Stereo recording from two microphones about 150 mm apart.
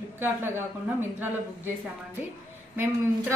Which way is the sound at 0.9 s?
15° right (ahead or behind).